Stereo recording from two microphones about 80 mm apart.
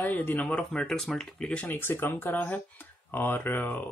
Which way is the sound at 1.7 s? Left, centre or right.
Left.